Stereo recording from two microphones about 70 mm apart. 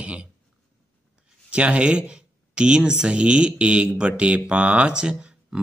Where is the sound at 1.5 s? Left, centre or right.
Centre.